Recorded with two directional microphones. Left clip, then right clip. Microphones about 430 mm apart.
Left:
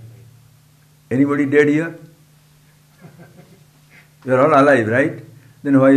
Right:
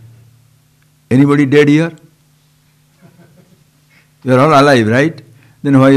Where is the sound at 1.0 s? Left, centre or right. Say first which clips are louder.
Right 6 dB; right.